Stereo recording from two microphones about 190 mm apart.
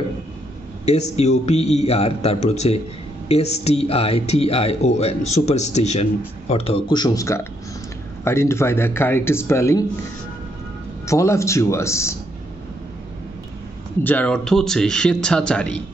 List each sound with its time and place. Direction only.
0.8 s a man's voice: 35° left (ahead or behind); by 9.8 s 15° left (ahead or behind)
11.1 s a man's voice: 15° left (ahead or behind)
14.0 s a man's voice: 10° left (ahead or behind)